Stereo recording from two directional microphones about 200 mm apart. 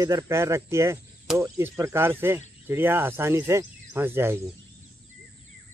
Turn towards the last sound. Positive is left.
turn(degrees=-10)  # may be behind; listen again after turning